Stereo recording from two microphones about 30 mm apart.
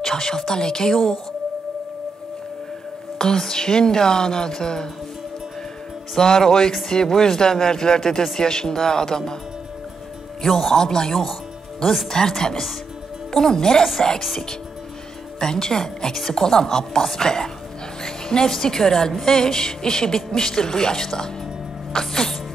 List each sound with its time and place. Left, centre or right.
0.0 s speech: centre
0.9 s a woman's voice: centre
3.2 s speech: centre
6.1 s speech: centre
10.5 s a man's voice: centre
10.8 s a woman's voice: centre
15.3 s a woman's voice: left